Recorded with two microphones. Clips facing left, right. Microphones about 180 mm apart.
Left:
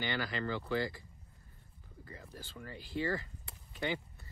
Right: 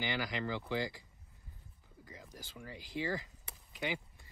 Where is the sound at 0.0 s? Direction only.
15° right (ahead or behind).